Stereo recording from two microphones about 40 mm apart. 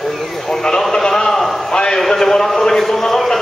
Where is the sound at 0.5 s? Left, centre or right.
Centre.